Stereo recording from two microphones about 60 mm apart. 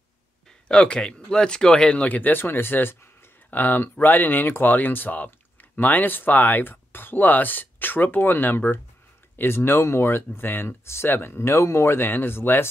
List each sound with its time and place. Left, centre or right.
0.7 s speech: centre; by 3.1 s left
3.4 s speech: left